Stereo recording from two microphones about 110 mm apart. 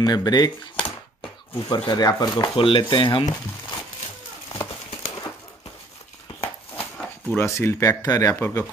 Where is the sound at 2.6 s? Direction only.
50° left (ahead or behind).